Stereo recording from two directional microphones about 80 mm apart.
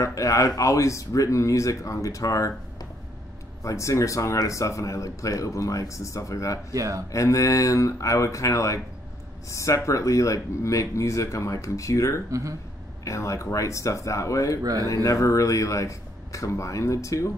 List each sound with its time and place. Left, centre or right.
0.0 s speech: left
6.7 s speech: right
7.1 s speech: left
12.3 s speech: right
13.0 s speech: left
14.6 s speech: right
14.9 s speech: left